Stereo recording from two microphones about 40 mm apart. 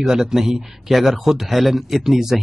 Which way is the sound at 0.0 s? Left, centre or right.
Centre.